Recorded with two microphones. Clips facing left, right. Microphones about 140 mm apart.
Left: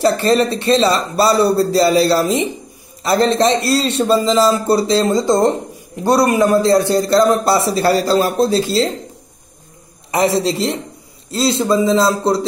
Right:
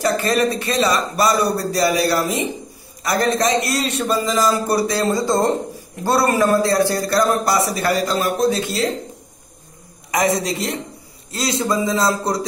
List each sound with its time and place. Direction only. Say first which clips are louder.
0.0 s a man's voice: left 4 dB; 30° left (ahead or behind)
10.1 s a man's voice: left 4 dB; 30° left (ahead or behind)